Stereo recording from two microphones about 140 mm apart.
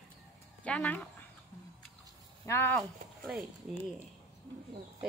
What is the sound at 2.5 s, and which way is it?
Speech, 15° left (ahead or behind).